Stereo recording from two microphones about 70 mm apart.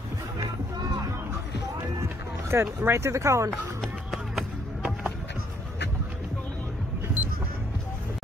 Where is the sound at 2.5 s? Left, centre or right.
Right.